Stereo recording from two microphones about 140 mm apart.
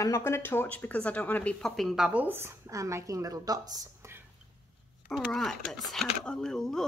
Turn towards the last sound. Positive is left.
turn(degrees=5)  # may be behind; listen again after turning